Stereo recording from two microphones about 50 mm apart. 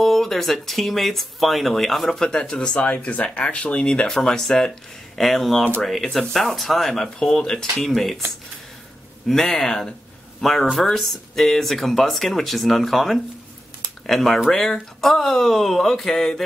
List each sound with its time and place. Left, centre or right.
0.0 s speech: centre
2.2 s speech: centre
9.3 s speech: centre